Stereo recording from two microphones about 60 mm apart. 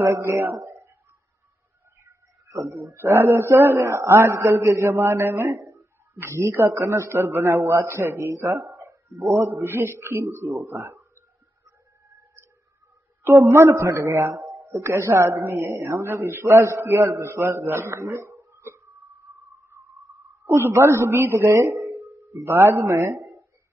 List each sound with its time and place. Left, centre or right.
0.0 s a man's voice: right
2.0 s a man's voice: right
5.6 s a sound: right
6.2 s a man's voice: right
13.2 s a man's voice: right
14.7 s a man's voice: right
18.5 s a sound: right
20.4 s a man's voice: right